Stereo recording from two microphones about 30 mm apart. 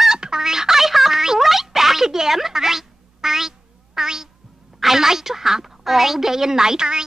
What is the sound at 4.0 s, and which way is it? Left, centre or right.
Cat, centre.